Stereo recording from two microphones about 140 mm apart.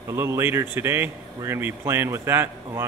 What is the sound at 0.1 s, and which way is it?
Speech, 20° right (ahead or behind).